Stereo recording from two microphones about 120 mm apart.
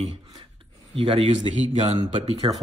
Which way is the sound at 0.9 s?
55° right (ahead or behind).